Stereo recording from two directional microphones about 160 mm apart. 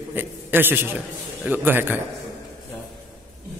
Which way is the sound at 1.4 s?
10° right (ahead or behind).